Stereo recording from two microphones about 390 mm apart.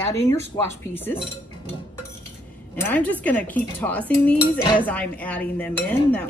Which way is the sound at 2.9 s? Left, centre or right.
Centre.